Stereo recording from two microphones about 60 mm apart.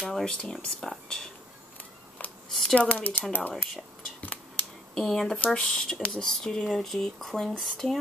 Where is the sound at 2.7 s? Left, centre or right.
Left.